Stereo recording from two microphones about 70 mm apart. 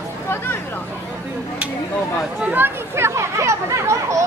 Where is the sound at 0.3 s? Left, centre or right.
Left.